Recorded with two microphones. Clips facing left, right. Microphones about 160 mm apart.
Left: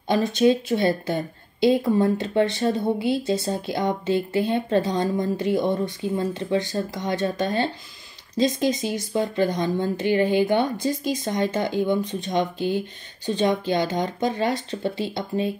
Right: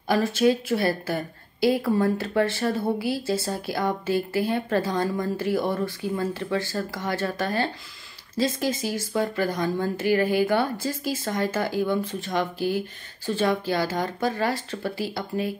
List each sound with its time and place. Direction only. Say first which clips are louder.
0.1 s a woman's voice: left 2 dB; 20° left (ahead or behind)